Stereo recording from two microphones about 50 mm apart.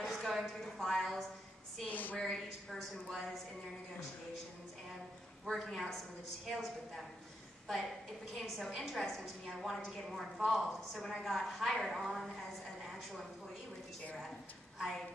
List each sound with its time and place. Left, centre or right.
0.0 s a woman's voice: centre
1.9 s a woman's voice: left
2.1 s a woman's voice: centre
5.5 s a woman's voice: centre
8.4 s a woman's voice: centre